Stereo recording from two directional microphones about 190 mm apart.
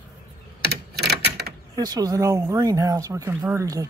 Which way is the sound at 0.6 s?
60° right (ahead or behind).